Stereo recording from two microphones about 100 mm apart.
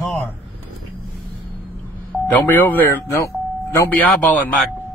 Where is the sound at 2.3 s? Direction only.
20° left (ahead or behind).